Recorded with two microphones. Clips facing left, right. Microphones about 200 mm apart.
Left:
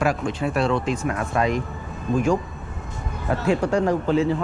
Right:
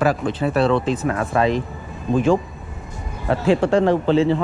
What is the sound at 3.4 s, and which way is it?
Speech, 30° right (ahead or behind).